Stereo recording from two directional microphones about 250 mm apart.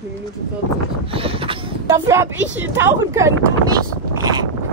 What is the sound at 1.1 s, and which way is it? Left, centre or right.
Speech, right.